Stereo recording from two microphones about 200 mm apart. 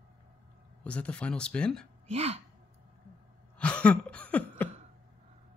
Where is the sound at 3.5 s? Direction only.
5° left (ahead or behind).